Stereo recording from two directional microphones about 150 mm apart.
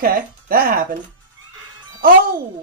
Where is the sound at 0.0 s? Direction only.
80° right.